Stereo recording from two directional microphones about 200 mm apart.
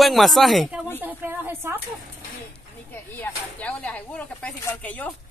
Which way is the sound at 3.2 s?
5° left (ahead or behind).